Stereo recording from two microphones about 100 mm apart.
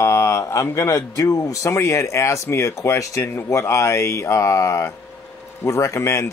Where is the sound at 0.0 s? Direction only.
30° left (ahead or behind).